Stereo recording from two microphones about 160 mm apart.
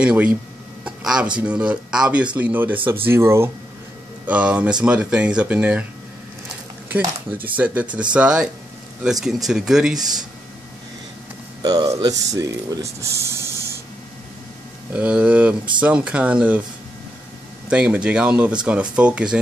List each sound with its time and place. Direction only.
0.0 s speech: 10° right (ahead or behind)
0.8 s a sound: 5° right (ahead or behind)
1.4 s speech: 5° right (ahead or behind)
7.5 s speech: 10° right (ahead or behind)
9.9 s speech: 25° right (ahead or behind)
11.6 s speech: 25° right (ahead or behind)
15.0 s speech: 10° right (ahead or behind)
17.6 s speech: 10° right (ahead or behind)